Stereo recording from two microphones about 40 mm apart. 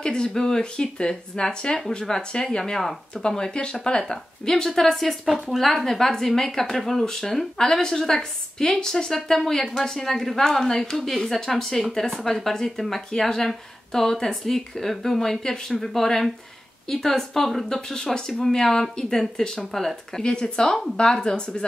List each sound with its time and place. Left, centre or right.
0.0 s speech: left
5.2 s speech: centre